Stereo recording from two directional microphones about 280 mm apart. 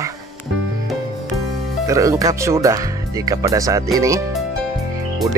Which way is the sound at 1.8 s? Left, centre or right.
Centre.